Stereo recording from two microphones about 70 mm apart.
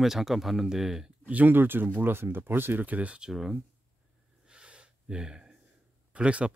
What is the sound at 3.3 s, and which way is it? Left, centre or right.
Speech, centre.